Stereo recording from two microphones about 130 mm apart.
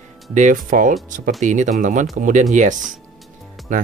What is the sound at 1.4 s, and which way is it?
Speech, 70° right (ahead or behind).